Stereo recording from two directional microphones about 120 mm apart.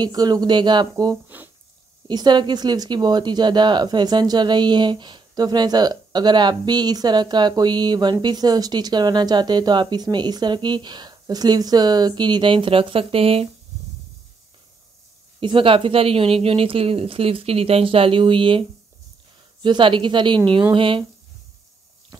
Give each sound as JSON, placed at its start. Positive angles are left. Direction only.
{"t": 0.0, "sound": "speech", "side_deg": -35}
{"t": 1.3, "sound": "speech", "side_deg": -15}
{"t": 2.0, "sound": "speech", "side_deg": -35}
{"t": 15.4, "sound": "a woman's voice", "side_deg": -45}